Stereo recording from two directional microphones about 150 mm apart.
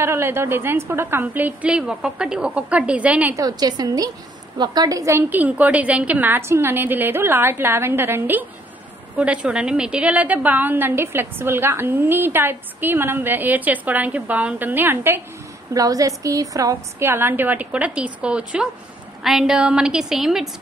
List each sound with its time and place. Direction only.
0.0 s a woman's voice: 15° right (ahead or behind)
3.3 s a woman's voice: 25° right (ahead or behind); by 20.4 s 5° right (ahead or behind)